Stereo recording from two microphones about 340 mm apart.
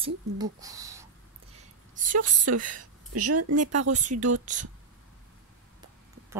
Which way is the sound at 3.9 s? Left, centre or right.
Right.